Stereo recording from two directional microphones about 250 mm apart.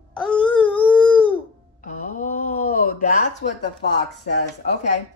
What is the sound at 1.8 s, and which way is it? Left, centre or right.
Music, left.